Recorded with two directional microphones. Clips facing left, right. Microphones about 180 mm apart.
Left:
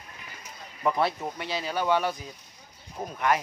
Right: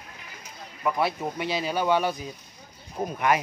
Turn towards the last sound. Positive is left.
turn(degrees=-10)  # may be behind; listen again after turning